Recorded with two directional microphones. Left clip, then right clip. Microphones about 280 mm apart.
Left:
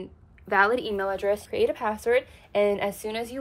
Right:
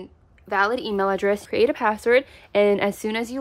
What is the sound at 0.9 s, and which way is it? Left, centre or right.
Speech, right.